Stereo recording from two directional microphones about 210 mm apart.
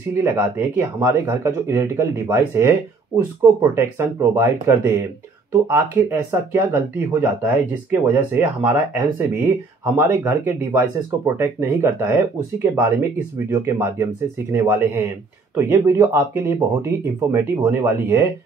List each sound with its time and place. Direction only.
0.2 s speech: 10° right (ahead or behind)
3.7 s speech: 10° right (ahead or behind)